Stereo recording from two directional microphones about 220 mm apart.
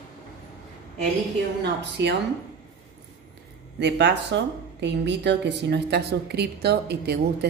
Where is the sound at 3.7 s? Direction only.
50° right (ahead or behind).